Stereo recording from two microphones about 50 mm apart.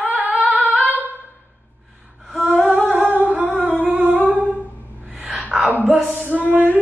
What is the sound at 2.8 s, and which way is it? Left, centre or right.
Humming, right.